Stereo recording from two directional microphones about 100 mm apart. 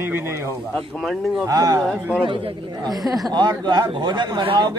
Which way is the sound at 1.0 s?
Centre (ahead or behind).